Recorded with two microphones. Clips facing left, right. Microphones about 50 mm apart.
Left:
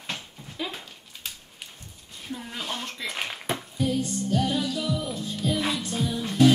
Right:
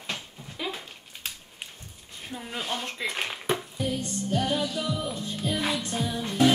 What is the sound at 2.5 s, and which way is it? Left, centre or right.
Speech, centre.